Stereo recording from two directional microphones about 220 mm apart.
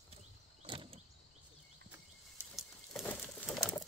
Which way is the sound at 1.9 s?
5° right (ahead or behind).